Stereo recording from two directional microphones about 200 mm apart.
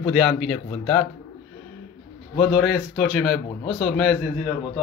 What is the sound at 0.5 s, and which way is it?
Speech, 35° left (ahead or behind).